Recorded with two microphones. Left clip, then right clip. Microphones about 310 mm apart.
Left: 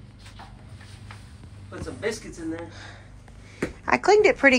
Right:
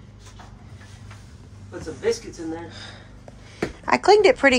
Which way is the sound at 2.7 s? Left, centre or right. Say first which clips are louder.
Right 3 dB; centre.